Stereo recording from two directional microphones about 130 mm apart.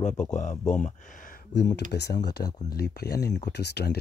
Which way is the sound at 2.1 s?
30° left (ahead or behind).